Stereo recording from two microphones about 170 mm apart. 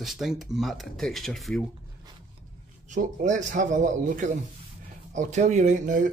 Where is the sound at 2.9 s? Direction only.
45° right (ahead or behind).